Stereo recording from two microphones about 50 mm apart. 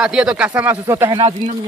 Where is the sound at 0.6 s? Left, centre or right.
Right.